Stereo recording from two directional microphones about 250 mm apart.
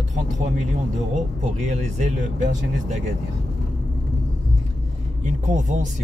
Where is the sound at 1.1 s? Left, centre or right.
Right.